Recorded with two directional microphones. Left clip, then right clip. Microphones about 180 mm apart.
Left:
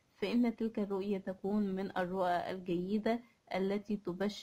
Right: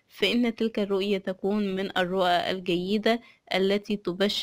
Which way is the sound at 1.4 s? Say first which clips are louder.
Right 8 dB; 10° right (ahead or behind).